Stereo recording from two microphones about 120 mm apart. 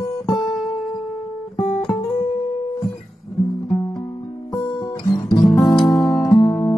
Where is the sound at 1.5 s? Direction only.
55° left (ahead or behind).